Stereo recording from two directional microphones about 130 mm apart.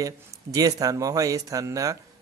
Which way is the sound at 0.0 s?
25° right (ahead or behind).